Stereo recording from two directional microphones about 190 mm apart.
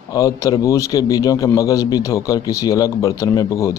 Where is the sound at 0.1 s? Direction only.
20° left (ahead or behind).